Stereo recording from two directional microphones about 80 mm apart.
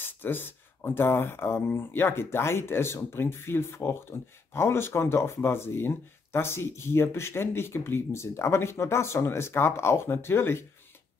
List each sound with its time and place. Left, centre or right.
0.0 s speech: left